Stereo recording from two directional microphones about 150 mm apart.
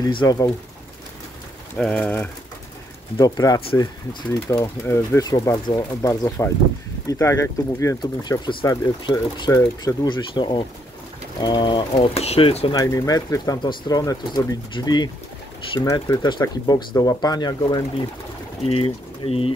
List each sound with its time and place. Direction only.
0.2 s speech: 25° left (ahead or behind)
1.8 s speech: 5° left (ahead or behind)
3.2 s speech: 25° left (ahead or behind)
12.7 s speech: 20° left (ahead or behind)
18.7 s speech: 40° left (ahead or behind)